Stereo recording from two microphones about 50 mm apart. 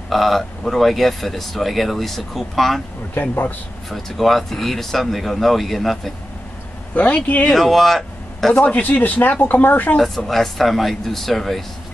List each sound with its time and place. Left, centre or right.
0.1 s speech: centre
3.2 s speech: left
3.9 s speech: centre
6.9 s speech: left
7.4 s speech: centre
8.5 s speech: left
9.9 s speech: centre